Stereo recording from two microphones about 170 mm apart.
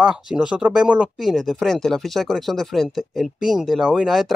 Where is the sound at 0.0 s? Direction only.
5° right (ahead or behind).